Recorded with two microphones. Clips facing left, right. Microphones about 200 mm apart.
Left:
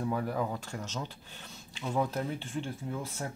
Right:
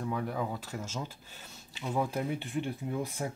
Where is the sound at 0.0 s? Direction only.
5° left (ahead or behind).